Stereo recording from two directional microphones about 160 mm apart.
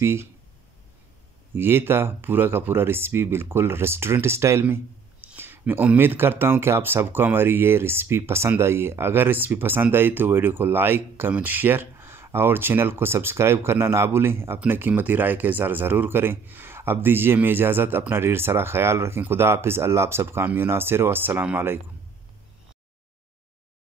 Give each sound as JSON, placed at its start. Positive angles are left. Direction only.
{"t": 0.0, "sound": "speech", "side_deg": -15}
{"t": 1.6, "sound": "speech", "side_deg": -15}